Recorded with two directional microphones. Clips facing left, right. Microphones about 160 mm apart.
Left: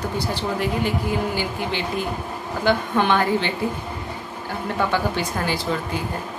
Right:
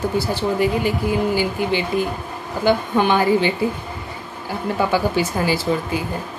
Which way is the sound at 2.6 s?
5° right (ahead or behind).